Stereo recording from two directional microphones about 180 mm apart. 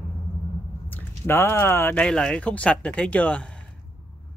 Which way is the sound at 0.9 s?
10° left (ahead or behind).